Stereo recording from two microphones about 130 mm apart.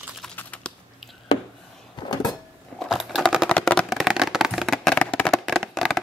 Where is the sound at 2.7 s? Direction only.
Centre (ahead or behind).